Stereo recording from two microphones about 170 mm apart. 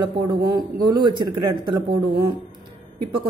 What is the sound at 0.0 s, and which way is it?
A woman's voice, 25° right (ahead or behind).